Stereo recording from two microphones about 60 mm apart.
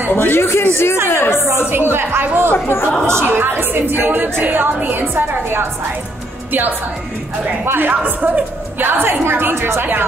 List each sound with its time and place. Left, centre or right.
0.1 s speech: left
1.7 s a woman's voice: right
2.5 s speech: left
3.3 s a woman's voice: right
7.6 s a woman's voice: right
7.9 s a woman's voice: right